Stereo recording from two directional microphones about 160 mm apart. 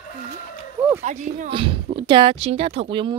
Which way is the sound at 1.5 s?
35° right (ahead or behind).